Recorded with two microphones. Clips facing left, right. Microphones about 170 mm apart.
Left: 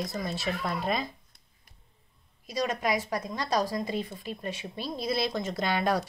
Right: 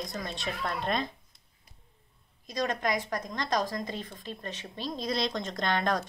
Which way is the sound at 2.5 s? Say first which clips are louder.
Left 1 dB; 5° left (ahead or behind).